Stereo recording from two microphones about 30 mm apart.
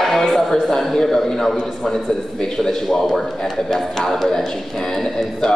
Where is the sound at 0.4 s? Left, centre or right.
Centre.